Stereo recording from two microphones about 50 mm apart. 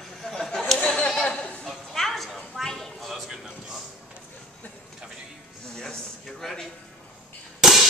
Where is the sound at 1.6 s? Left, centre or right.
Centre.